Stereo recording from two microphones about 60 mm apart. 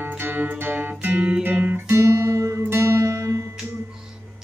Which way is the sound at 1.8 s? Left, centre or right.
Right.